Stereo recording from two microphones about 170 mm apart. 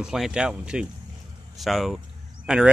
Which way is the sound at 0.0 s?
5° right (ahead or behind).